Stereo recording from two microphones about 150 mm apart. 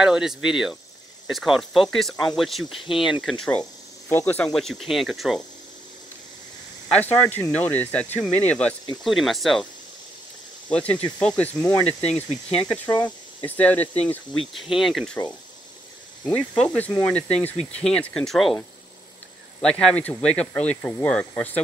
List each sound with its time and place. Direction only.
0.0 s speech: 5° right (ahead or behind)
4.6 s speech: centre (ahead or behind)
7.0 s speech: 15° left (ahead or behind)
10.7 s speech: 10° left (ahead or behind)
16.3 s speech: 10° left (ahead or behind)
19.6 s speech: 5° left (ahead or behind)